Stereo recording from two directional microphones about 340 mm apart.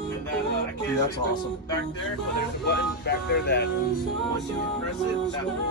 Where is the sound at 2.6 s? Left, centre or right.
Left.